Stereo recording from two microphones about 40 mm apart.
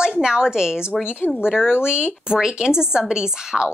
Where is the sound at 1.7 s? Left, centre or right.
Left.